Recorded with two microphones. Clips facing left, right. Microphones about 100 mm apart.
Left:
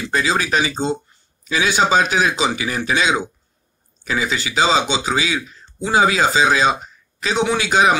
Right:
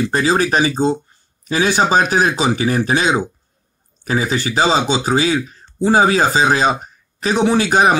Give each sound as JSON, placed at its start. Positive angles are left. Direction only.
{"t": 0.0, "sound": "speech", "side_deg": -45}